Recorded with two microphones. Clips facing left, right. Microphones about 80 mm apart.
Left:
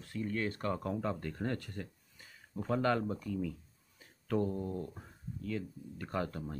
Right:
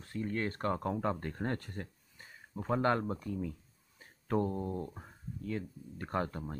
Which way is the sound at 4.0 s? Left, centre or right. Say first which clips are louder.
Right 1 dB; right.